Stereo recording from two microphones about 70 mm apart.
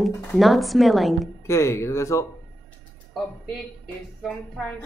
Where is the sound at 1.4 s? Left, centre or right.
Left.